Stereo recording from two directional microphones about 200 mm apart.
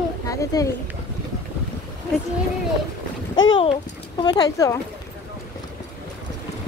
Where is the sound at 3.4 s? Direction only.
20° left (ahead or behind).